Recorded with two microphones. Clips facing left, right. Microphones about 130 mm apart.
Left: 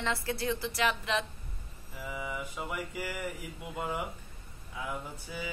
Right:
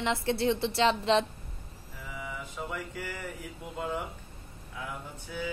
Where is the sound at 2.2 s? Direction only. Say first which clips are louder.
Right 1 dB; 10° left (ahead or behind).